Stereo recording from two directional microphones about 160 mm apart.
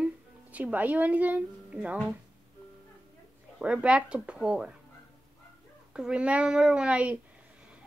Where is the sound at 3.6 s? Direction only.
5° right (ahead or behind).